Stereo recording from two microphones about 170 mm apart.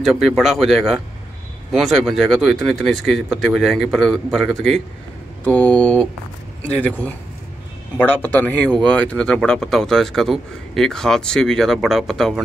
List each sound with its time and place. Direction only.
0.0 s speech: centre (ahead or behind)